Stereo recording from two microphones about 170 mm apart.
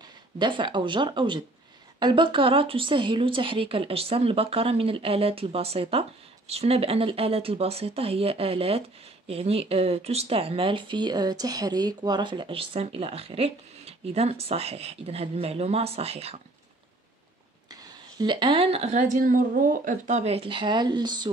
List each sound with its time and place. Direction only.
0.4 s speech: 25° right (ahead or behind)
17.6 s speech: 25° right (ahead or behind)